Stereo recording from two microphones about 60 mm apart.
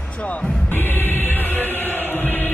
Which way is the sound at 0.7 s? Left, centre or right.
Left.